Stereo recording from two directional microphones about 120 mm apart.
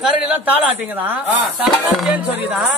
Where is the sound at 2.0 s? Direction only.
Centre (ahead or behind).